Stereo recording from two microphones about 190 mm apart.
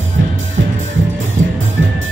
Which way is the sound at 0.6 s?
70° right (ahead or behind).